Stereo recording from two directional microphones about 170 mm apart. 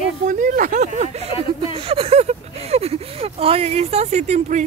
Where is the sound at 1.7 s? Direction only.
35° right (ahead or behind).